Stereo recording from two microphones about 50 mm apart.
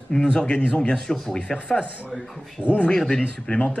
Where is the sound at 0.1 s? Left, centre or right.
Centre.